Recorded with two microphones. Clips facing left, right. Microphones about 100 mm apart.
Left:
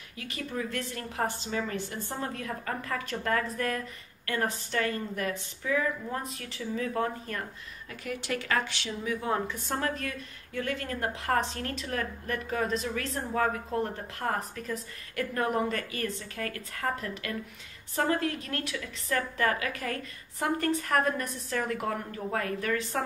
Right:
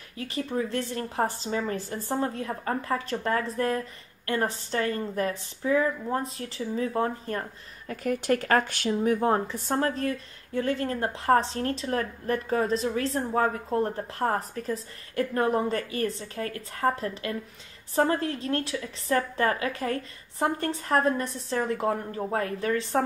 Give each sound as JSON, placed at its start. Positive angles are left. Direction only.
{"t": 0.2, "sound": "speech", "side_deg": -30}
{"t": 7.9, "sound": "speech", "side_deg": -45}